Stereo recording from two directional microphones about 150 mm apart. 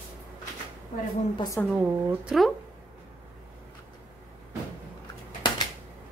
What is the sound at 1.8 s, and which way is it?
Speech, 10° right (ahead or behind).